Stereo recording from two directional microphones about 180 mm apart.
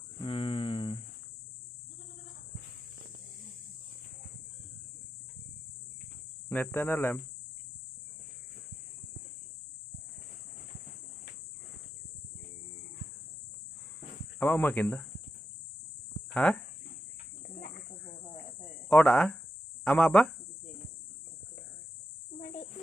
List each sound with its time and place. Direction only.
0.2 s a sound: 30° left (ahead or behind)
6.5 s speech: 10° left (ahead or behind)
14.4 s speech: 10° left (ahead or behind)
16.3 s speech: 5° left (ahead or behind)
18.9 s speech: 10° left (ahead or behind)
22.4 s a sound: 45° left (ahead or behind)